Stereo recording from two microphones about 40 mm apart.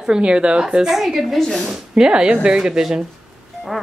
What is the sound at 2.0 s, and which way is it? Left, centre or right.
Speech, right.